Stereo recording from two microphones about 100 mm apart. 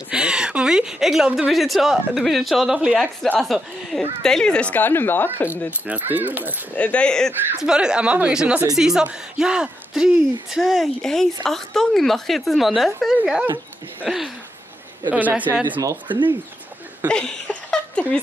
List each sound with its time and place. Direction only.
0.1 s a woman's voice: 10° right (ahead or behind); by 5.5 s 20° left (ahead or behind)
5.5 s speech: 15° right (ahead or behind)
6.7 s speech: 15° left (ahead or behind)
7.6 s a woman's voice: 10° right (ahead or behind)
15.0 s speech: 15° right (ahead or behind)
17.1 s speech: 10° left (ahead or behind)